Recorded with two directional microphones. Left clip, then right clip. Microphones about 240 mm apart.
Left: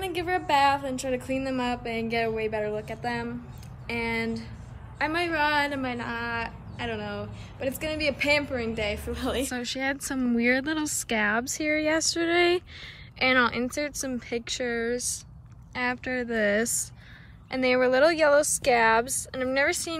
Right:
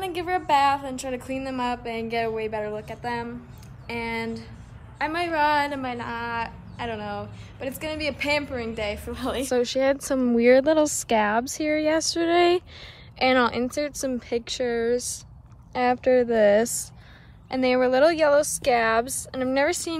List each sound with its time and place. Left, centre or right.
0.0 s a woman's voice: centre
9.5 s a woman's voice: right